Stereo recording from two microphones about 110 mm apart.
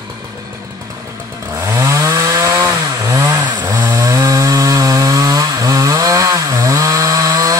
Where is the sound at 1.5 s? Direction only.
30° right (ahead or behind).